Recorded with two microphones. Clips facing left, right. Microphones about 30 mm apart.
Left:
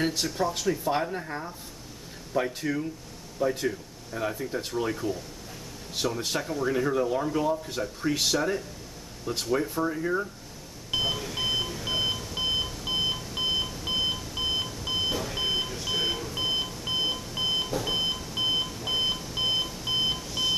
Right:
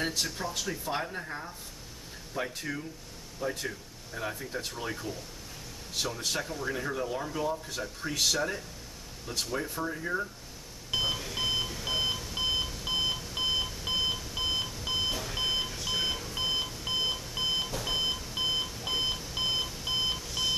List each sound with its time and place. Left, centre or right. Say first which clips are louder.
0.2 s speech: left 6 dB; centre
10.9 s beep: left 2 dB; centre